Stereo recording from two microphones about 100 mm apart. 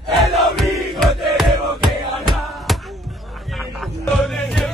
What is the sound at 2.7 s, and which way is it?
Basketball bounce, centre (ahead or behind).